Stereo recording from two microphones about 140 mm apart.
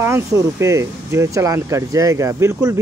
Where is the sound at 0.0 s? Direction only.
20° right (ahead or behind).